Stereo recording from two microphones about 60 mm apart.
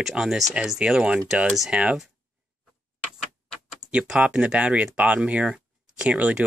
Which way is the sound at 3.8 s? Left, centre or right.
Centre.